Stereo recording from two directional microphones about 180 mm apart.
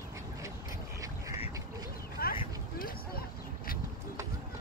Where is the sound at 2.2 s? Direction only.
55° left (ahead or behind).